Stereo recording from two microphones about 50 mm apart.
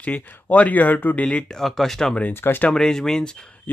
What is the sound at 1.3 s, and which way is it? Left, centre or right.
Speech, centre.